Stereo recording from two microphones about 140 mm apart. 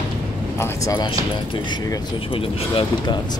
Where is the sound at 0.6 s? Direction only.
20° left (ahead or behind).